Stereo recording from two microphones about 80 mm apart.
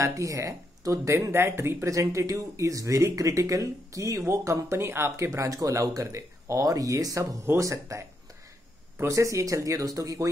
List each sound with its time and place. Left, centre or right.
0.0 s speech: right